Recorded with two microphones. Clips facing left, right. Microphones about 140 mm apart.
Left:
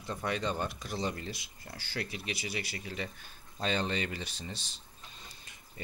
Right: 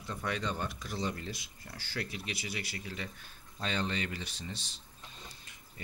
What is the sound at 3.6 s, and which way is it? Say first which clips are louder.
Speech: left 3 dB; 25° left (ahead or behind).